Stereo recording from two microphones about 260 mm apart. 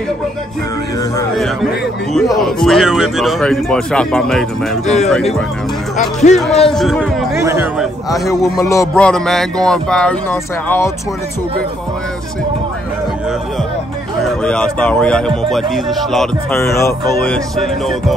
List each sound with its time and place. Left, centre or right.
2.1 s speech: centre
4.8 s speech: left
6.3 s speech: centre
7.3 s speech: centre
8.1 s a man's voice: centre
14.4 s speech: centre